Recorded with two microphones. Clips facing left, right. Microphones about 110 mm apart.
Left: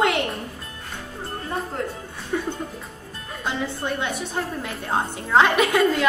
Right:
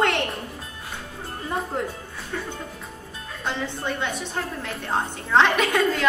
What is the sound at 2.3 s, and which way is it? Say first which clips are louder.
Music: left 6 dB; 10° left (ahead or behind).